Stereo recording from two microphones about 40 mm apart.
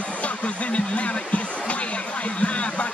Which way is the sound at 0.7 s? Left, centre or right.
Left.